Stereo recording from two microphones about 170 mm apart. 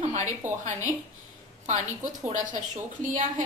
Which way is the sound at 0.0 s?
40° right (ahead or behind).